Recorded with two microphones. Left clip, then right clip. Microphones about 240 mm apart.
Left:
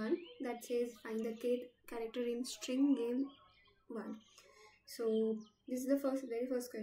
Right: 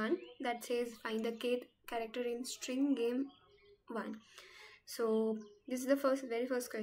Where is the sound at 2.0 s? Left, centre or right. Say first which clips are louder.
Right 1 dB; centre.